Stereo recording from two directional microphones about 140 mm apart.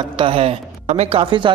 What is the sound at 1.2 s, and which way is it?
Speech, 35° right (ahead or behind).